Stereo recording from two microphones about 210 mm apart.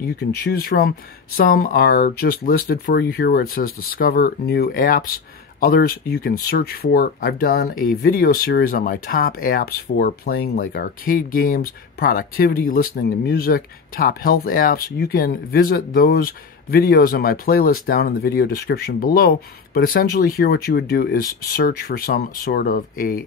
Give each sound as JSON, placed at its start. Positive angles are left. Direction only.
{"t": 0.0, "sound": "speech", "side_deg": 45}